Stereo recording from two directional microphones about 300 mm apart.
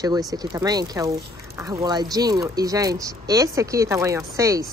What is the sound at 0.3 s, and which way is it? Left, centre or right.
Speech, centre.